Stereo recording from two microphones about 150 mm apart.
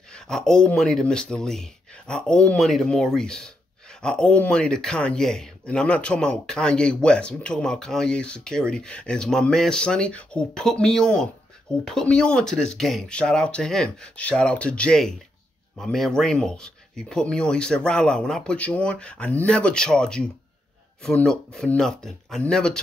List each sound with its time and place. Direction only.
0.1 s speech: 5° left (ahead or behind)